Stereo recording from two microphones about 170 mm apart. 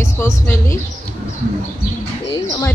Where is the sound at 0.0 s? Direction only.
15° left (ahead or behind).